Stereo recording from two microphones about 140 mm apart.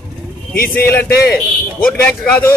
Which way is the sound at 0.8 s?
15° left (ahead or behind).